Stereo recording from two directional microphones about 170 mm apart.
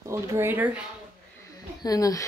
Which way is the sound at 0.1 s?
15° right (ahead or behind).